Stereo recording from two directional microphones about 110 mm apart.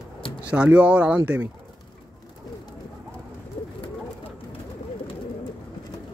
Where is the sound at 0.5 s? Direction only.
10° right (ahead or behind).